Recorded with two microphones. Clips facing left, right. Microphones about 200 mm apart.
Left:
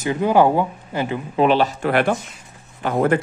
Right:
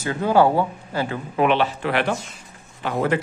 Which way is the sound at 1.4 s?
35° left (ahead or behind).